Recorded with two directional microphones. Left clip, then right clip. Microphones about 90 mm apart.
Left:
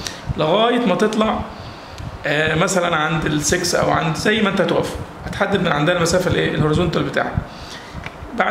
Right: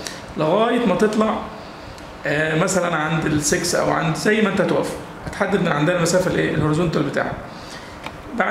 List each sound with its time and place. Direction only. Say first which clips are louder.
0.0 s a man's voice: left 1 dB; 25° left (ahead or behind)
8.4 s speech: left 2 dB; 25° left (ahead or behind)